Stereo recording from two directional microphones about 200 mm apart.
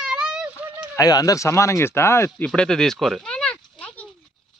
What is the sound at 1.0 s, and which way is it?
Speech, 15° left (ahead or behind).